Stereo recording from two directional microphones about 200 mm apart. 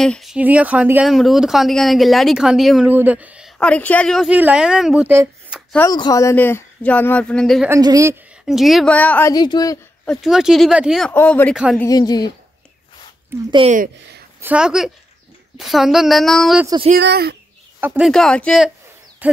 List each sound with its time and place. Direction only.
0.0 s speech: centre (ahead or behind)
3.5 s speech: 5° left (ahead or behind); by 5.6 s 10° right (ahead or behind)
5.9 s speech: 20° left (ahead or behind); by 7.7 s centre (ahead or behind)
7.7 s speech: 15° right (ahead or behind)
8.5 s speech: centre (ahead or behind)
9.3 s speech: 20° left (ahead or behind)
10.0 s speech: centre (ahead or behind)
11.8 s speech: 20° left (ahead or behind)
13.5 s speech: 25° right (ahead or behind)
14.4 s speech: 5° right (ahead or behind)
16.6 s speech: 25° right (ahead or behind)
16.9 s speech: 55° right (ahead or behind)
17.7 s speech: 10° right (ahead or behind)
19.2 s owl: 10° right (ahead or behind)